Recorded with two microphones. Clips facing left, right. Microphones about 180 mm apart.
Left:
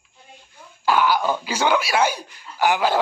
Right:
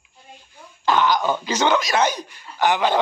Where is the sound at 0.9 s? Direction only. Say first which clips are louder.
Even; 10° left (ahead or behind).